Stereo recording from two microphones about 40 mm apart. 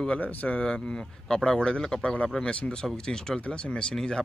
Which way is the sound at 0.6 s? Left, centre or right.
Left.